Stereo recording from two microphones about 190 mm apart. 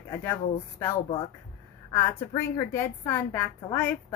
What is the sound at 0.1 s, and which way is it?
A woman's voice, 15° left (ahead or behind).